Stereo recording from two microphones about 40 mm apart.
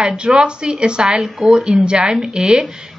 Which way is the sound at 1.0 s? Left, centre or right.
Centre.